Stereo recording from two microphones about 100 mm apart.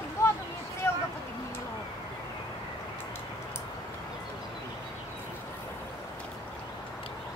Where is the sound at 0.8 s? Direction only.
30° left (ahead or behind).